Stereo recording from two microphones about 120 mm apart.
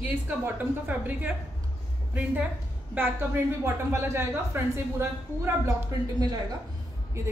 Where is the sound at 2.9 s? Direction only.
20° right (ahead or behind).